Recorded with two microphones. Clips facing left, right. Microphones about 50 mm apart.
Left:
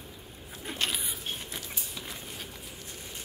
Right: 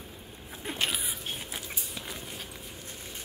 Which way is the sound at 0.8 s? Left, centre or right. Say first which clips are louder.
Right 1 dB; centre.